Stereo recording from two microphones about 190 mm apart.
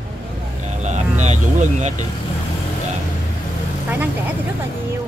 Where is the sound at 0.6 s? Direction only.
35° right (ahead or behind).